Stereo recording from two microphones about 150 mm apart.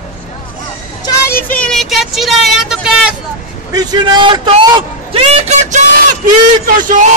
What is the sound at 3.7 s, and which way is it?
A man's voice, 25° right (ahead or behind).